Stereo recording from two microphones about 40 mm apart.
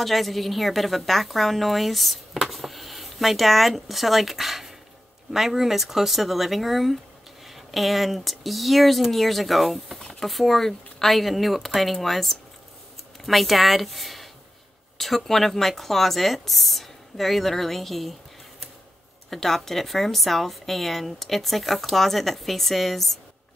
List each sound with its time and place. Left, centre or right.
0.0 s a woman's voice: centre
19.3 s speech: centre